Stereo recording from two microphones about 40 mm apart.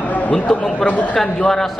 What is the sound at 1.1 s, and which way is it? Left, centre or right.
Speech, centre.